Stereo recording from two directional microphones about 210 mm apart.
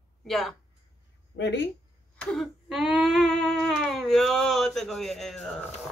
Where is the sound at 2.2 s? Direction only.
Centre (ahead or behind).